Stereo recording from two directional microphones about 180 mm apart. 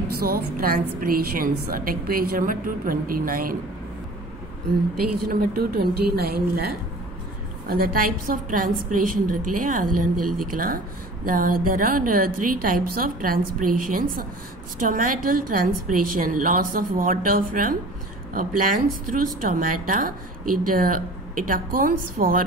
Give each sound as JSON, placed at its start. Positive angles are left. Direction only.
{"t": 0.1, "sound": "a woman's voice", "side_deg": -55}
{"t": 4.6, "sound": "a woman's voice", "side_deg": -55}